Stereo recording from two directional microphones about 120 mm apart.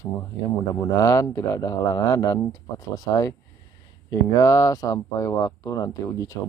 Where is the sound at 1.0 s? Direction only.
25° left (ahead or behind).